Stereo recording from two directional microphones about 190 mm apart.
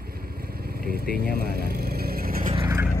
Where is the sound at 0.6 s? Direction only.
50° right (ahead or behind).